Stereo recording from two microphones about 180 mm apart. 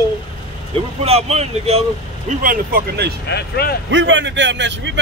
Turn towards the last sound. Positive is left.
turn(degrees=-80)